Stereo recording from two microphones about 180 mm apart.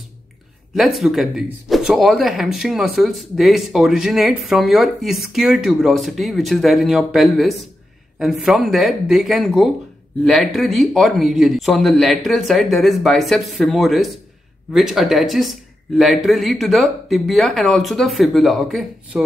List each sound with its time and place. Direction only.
0.7 s speech: centre (ahead or behind)